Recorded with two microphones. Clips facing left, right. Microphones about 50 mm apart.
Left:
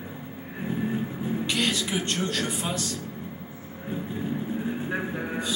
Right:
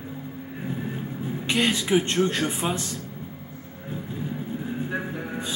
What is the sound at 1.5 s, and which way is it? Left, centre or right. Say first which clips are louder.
Speech: right 7 dB; right.